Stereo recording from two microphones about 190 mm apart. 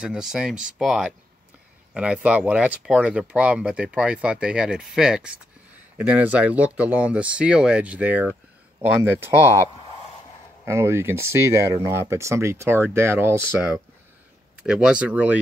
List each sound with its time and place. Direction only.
0.0 s speech: 5° right (ahead or behind)
10.6 s speech: 15° right (ahead or behind)